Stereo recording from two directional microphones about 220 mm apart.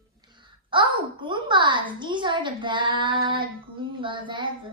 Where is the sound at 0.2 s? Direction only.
20° right (ahead or behind).